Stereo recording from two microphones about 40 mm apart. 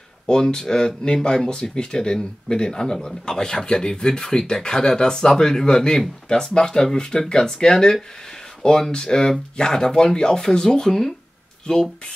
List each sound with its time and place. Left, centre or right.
0.3 s speech: centre